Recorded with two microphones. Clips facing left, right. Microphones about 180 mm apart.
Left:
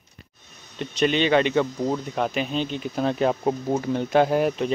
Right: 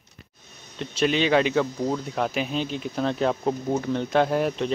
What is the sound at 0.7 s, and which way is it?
Speech, centre (ahead or behind).